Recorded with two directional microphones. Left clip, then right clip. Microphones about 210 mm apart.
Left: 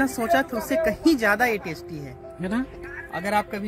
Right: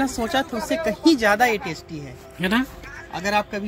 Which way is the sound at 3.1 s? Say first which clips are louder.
Right 2 dB; 25° left (ahead or behind).